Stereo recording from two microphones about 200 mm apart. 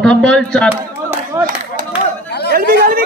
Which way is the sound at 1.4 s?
15° right (ahead or behind).